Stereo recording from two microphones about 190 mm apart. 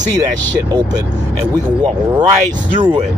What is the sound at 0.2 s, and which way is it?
Speech, 20° right (ahead or behind).